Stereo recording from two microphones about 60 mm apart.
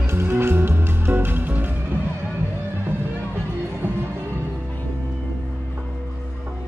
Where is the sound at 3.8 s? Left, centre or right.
Right.